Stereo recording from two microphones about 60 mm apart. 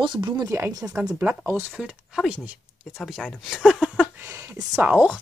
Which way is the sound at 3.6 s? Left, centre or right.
Centre.